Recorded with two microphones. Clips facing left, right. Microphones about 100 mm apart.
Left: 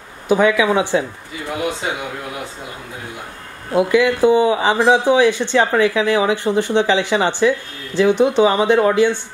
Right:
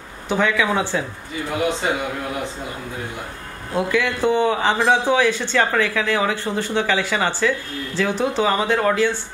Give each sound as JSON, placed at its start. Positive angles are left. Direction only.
{"t": 0.3, "sound": "speech", "side_deg": 15}
{"t": 3.7, "sound": "speech", "side_deg": 15}